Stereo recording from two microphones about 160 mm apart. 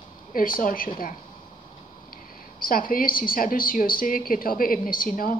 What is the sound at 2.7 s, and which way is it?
A woman's voice, 65° left (ahead or behind).